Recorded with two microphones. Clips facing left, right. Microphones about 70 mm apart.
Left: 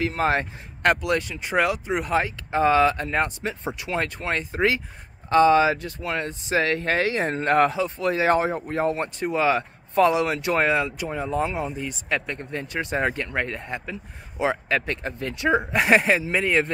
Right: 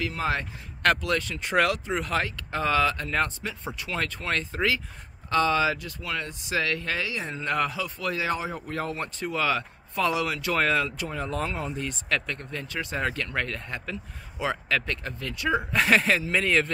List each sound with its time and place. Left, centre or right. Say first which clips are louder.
0.0 s speech: left 5 dB; left
0.8 s speech: left 3 dB; centre
1.4 s speech: left 1 dB; centre; by 8.3 s left
8.3 s speech: left 9 dB; left
8.5 s speech: left 7 dB; left; by 12.0 s centre
12.1 s speech: left 3 dB; left